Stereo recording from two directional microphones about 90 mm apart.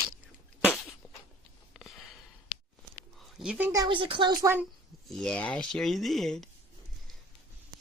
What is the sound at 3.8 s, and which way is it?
Speech, 70° right (ahead or behind).